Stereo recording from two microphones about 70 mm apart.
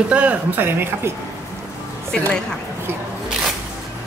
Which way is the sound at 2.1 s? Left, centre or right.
Centre.